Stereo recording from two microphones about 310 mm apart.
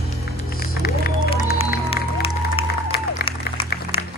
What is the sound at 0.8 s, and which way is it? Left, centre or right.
Run, left.